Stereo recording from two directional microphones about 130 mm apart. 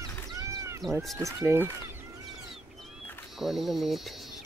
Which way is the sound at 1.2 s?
25° right (ahead or behind).